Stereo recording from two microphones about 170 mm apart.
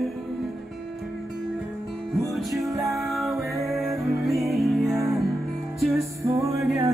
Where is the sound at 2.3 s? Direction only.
Centre (ahead or behind).